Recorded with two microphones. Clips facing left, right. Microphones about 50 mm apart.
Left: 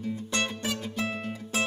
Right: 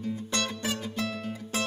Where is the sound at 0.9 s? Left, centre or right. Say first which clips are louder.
Left 1 dB; left.